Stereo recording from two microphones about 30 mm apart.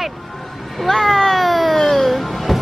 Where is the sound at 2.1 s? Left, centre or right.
Centre.